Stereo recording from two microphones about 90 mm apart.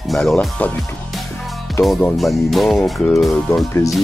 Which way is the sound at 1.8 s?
30° left (ahead or behind).